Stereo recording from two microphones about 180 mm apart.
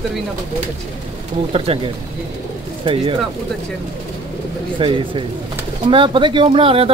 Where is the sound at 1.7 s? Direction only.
35° right (ahead or behind).